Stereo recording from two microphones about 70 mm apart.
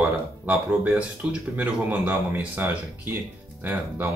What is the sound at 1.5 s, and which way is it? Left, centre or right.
Speech, right.